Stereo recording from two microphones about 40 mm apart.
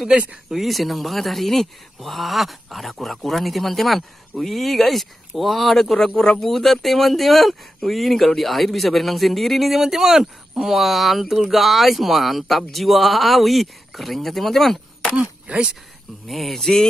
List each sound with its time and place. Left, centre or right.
0.1 s speech: right
0.7 s speech: centre
6.0 s speech: centre
6.4 s speech: centre
15.1 s speech: right
16.3 s speech: centre